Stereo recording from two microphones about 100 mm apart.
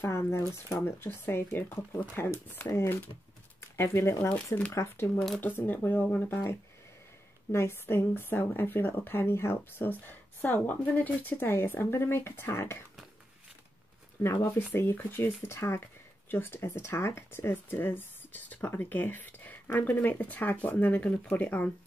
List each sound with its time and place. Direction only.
0.0 s speech: 25° left (ahead or behind)
7.5 s speech: 25° left (ahead or behind)
14.2 s speech: 15° left (ahead or behind)